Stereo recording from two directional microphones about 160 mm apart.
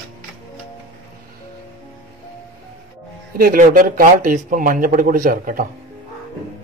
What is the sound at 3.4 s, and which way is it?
Speech, 60° right (ahead or behind).